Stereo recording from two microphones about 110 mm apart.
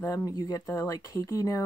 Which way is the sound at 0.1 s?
35° left (ahead or behind).